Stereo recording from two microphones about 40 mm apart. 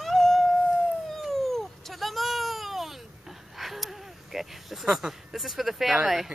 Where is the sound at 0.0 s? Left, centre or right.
Centre.